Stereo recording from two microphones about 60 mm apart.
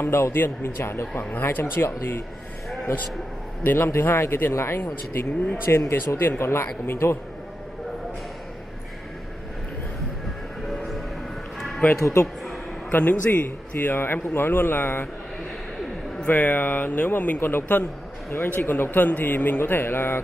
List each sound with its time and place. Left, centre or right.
0.0 s a man's voice: left
3.6 s a man's voice: left
10.7 s music: centre
12.0 s speech: left
12.9 s a man's voice: left
16.3 s a man's voice: left